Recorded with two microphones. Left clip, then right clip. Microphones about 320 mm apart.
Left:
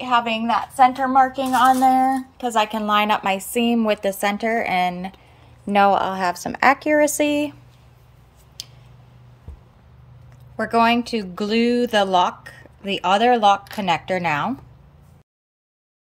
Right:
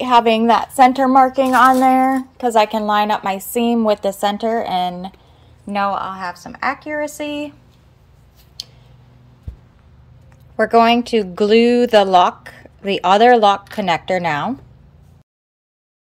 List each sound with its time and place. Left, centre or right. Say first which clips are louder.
0.0 s a woman's voice: right 7 dB; centre
2.3 s a woman's voice: right 6 dB; centre
5.7 s speech: left 3 dB; centre
8.6 s scissors: right 4 dB; centre
10.5 s a woman's voice: right 5 dB; centre